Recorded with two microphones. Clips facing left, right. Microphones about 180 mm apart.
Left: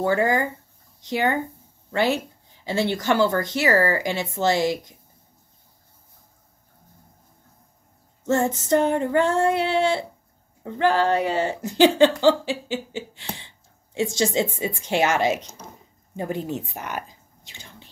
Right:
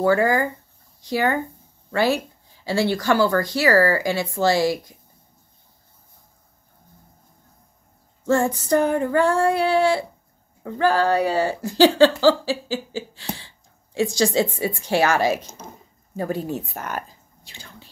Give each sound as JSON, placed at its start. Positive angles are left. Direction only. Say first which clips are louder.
{"t": 0.0, "sound": "speech", "louder": "right 2 dB", "side_deg": 20}
{"t": 8.2, "sound": "speech", "louder": "right 2 dB", "side_deg": 20}